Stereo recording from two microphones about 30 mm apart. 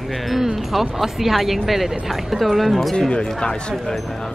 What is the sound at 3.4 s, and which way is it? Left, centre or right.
Speech, left.